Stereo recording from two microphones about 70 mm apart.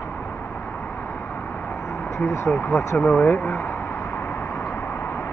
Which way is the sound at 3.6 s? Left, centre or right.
Left.